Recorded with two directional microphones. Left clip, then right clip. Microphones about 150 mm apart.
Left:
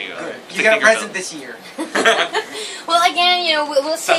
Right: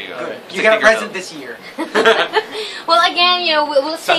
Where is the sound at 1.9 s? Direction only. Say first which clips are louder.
Right 3 dB; 65° right (ahead or behind).